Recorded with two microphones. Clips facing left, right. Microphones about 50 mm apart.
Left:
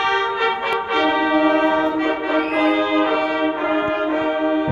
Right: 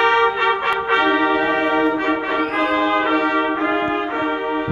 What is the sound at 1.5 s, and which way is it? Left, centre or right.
Brass instrument, centre.